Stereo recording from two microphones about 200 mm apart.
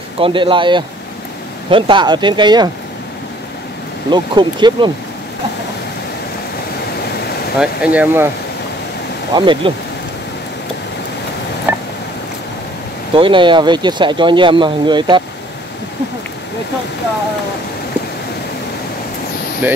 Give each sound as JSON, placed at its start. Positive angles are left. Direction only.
{"t": 0.2, "sound": "speech", "side_deg": -25}
{"t": 4.1, "sound": "speech", "side_deg": -20}
{"t": 7.5, "sound": "speech", "side_deg": -5}
{"t": 9.3, "sound": "speech", "side_deg": -25}
{"t": 11.7, "sound": "telephone dialing", "side_deg": -10}
{"t": 13.1, "sound": "speech", "side_deg": -25}
{"t": 19.6, "sound": "speech", "side_deg": -10}